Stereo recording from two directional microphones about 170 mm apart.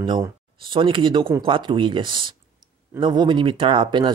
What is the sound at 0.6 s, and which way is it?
Speech, 30° right (ahead or behind).